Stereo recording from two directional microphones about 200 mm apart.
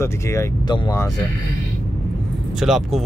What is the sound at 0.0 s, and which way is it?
Speech, 15° left (ahead or behind).